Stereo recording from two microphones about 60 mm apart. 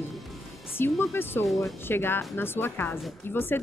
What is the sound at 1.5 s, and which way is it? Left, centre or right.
Speech, centre.